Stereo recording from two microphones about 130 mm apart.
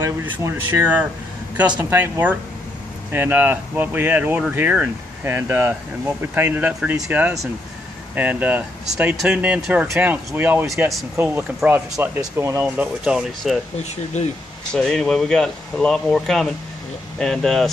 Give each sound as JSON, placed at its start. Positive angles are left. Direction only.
{"t": 0.0, "sound": "speech", "side_deg": -20}
{"t": 12.6, "sound": "speech", "side_deg": -10}
{"t": 14.7, "sound": "speech", "side_deg": 5}